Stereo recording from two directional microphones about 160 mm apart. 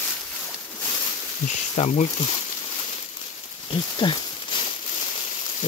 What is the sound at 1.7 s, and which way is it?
Speech, 40° left (ahead or behind).